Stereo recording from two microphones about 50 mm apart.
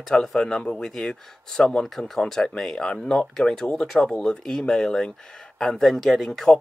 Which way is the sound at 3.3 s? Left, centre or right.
Centre.